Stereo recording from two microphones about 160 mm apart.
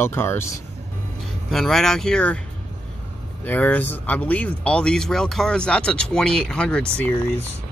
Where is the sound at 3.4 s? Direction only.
10° left (ahead or behind).